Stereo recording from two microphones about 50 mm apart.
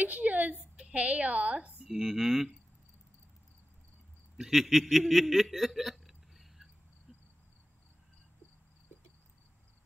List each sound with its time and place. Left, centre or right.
0.0 s a woman's voice: right
1.9 s speech: centre
4.4 s snicker: centre